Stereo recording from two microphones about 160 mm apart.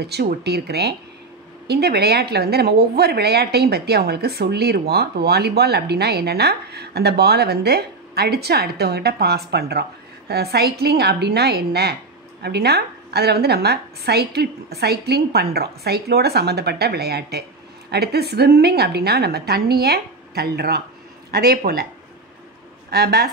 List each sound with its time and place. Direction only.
0.0 s a woman's voice: 80° right
22.8 s a woman's voice: 90° right